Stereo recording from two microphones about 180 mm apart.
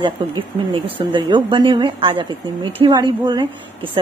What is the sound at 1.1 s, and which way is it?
A woman's voice, 25° right (ahead or behind).